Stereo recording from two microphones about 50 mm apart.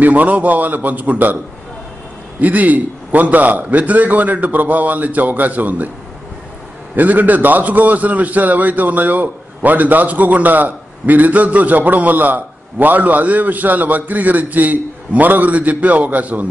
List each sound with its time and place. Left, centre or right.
0.0 s a man's voice: right
2.4 s a man's voice: right
7.0 s a man's voice: right